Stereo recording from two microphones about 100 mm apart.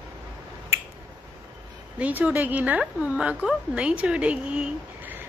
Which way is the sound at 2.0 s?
15° right (ahead or behind).